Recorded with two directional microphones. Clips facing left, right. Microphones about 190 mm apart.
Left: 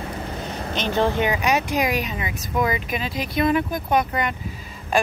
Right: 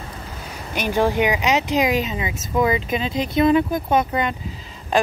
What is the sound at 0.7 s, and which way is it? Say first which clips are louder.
Speech: right 2 dB; 10° right (ahead or behind).